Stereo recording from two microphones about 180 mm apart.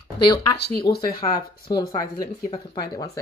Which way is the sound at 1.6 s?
25° left (ahead or behind).